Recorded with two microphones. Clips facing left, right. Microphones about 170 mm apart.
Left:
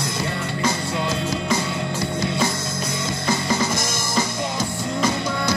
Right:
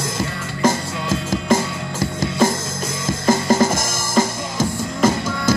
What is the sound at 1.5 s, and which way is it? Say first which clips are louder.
Music: right 4 dB; 45° right (ahead or behind).